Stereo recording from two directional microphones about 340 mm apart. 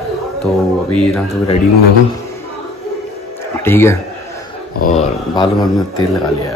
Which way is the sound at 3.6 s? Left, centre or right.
Centre.